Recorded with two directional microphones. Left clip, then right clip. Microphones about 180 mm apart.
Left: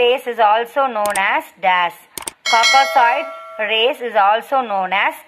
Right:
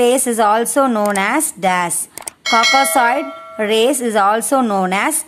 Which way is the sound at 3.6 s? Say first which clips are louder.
Right 2 dB; 35° right (ahead or behind).